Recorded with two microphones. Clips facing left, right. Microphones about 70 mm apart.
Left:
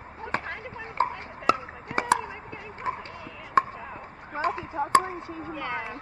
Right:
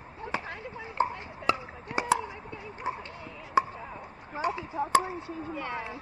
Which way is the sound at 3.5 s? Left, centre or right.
Left.